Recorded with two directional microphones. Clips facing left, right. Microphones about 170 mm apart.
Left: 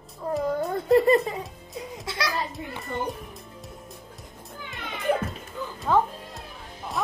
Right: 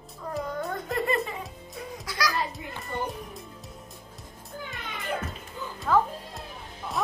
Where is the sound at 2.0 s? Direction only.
25° left (ahead or behind).